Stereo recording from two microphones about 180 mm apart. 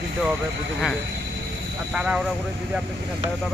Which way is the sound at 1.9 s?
5° right (ahead or behind).